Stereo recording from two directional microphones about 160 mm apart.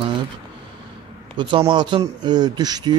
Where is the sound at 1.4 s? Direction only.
30° right (ahead or behind).